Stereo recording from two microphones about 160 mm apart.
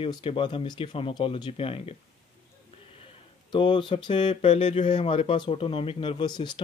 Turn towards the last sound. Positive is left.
turn(degrees=30)  # may be behind; listen again after turning